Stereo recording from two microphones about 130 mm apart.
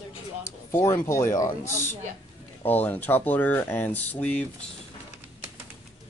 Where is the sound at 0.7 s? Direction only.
20° left (ahead or behind).